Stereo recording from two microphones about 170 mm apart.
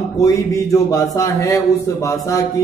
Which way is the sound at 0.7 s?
20° left (ahead or behind).